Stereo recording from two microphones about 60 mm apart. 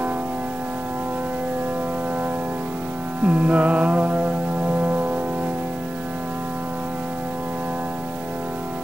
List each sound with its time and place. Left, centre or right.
3.3 s music: right